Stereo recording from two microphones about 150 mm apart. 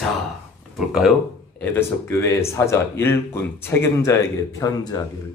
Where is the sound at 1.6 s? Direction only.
15° left (ahead or behind).